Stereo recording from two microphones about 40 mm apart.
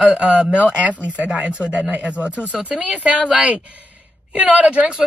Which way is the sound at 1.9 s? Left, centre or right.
Right.